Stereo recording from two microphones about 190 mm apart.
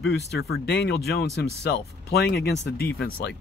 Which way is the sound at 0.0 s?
60° left (ahead or behind).